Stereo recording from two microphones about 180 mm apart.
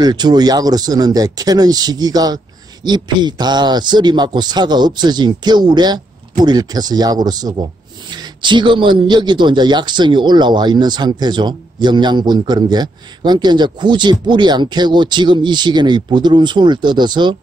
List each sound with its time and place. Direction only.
0.0 s a man's voice: 25° right (ahead or behind)